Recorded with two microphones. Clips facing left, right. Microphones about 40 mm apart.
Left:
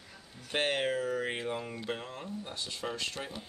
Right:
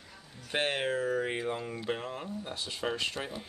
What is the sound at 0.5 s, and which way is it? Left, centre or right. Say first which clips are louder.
Speech: even; centre.